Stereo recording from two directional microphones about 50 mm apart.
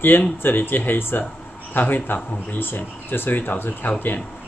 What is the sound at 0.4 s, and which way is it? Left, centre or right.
Speech, left.